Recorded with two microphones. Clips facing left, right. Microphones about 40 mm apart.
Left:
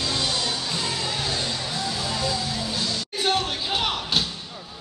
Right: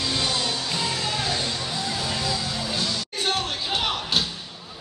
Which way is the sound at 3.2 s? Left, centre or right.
Centre.